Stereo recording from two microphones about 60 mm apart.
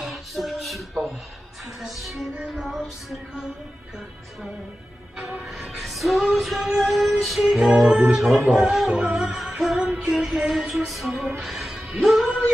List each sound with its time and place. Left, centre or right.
0.0 s music: centre
5.1 s music: right
5.8 s music: centre